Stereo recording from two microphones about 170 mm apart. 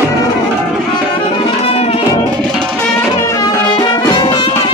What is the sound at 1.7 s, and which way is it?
Music, 35° left (ahead or behind).